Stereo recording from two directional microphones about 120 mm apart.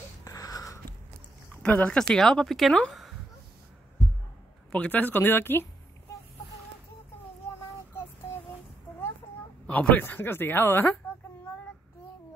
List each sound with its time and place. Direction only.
0.2 s a sound: 30° left (ahead or behind)
1.6 s speech: 10° left (ahead or behind)
4.7 s speech: 10° left (ahead or behind)
9.7 s speech: 10° left (ahead or behind)